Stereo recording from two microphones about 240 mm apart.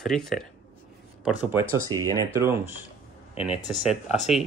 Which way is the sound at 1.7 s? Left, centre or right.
Centre.